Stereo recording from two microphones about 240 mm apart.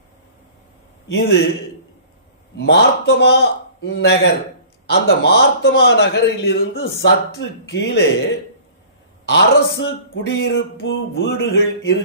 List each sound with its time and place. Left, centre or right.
1.0 s a man's voice: left
2.5 s a man's voice: left
9.3 s a man's voice: left